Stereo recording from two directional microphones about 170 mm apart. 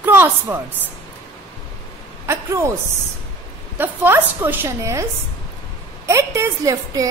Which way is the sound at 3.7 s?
10° right (ahead or behind).